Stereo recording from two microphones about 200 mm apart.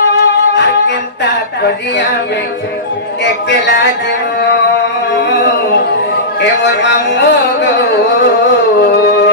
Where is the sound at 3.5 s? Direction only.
60° left (ahead or behind).